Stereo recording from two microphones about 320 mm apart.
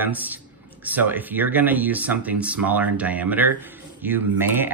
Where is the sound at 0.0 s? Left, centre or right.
Centre.